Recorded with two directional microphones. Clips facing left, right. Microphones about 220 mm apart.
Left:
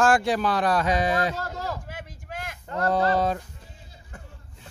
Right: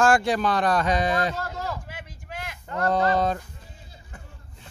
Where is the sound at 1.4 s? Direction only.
40° left (ahead or behind).